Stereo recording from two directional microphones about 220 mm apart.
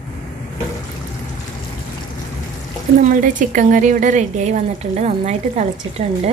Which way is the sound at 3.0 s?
35° right (ahead or behind).